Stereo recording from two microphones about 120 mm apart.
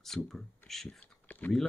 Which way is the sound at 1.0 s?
15° left (ahead or behind).